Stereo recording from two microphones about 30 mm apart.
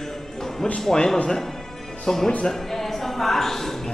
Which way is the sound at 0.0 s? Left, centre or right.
Centre.